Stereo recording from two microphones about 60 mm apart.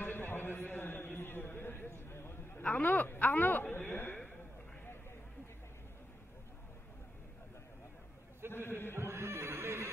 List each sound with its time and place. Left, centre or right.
0.0 s a sound: left
2.6 s a man's voice: left
8.5 s a man's voice: left
8.9 s neigh: right